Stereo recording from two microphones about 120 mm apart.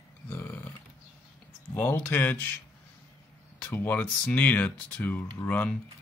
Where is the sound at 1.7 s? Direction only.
20° left (ahead or behind).